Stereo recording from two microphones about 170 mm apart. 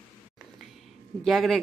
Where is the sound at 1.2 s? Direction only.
Centre (ahead or behind).